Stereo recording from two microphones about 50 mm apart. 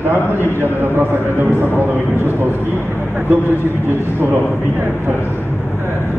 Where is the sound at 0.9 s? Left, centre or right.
Right.